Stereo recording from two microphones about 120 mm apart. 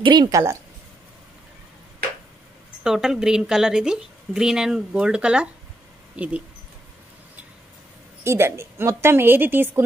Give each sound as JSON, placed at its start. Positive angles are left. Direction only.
{"t": 0.0, "sound": "speech", "side_deg": -40}
{"t": 0.3, "sound": "a woman's voice", "side_deg": -25}
{"t": 2.8, "sound": "a woman's voice", "side_deg": -5}
{"t": 8.2, "sound": "a woman's voice", "side_deg": -20}